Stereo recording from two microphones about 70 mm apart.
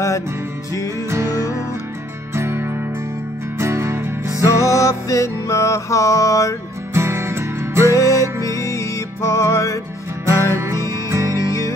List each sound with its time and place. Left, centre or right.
2.3 s music: right
4.6 s mantra: left
6.9 s music: right
7.9 s music: left
10.2 s music: right